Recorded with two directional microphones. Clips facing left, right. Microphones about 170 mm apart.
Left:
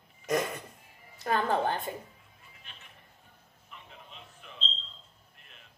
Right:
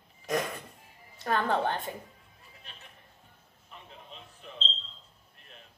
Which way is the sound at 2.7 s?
35° right (ahead or behind).